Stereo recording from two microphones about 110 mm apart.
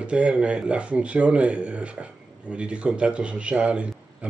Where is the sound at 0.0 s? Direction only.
10° right (ahead or behind).